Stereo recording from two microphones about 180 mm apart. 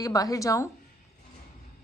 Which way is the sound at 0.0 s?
20° left (ahead or behind).